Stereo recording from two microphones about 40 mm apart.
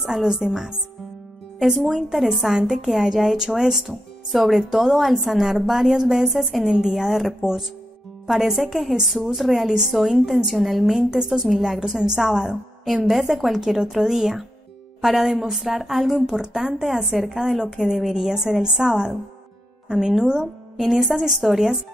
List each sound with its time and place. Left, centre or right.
0.0 s speech: centre
8.3 s a woman's voice: centre
9.7 s speech: centre
9.9 s a woman's voice: centre
11.0 s speech: centre
16.3 s speech: centre
20.7 s a woman's voice: centre